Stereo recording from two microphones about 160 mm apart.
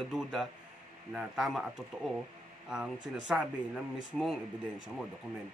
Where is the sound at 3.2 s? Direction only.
5° right (ahead or behind).